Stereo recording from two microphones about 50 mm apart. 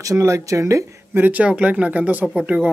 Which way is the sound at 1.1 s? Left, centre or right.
Right.